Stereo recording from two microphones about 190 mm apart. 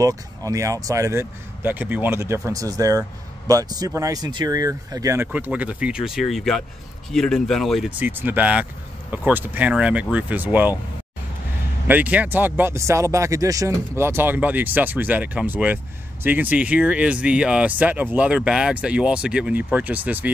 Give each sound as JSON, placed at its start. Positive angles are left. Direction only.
{"t": 0.0, "sound": "speech", "side_deg": -15}
{"t": 11.9, "sound": "speech", "side_deg": -10}